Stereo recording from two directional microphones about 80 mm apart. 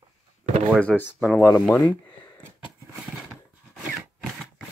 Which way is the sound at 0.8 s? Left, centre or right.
Centre.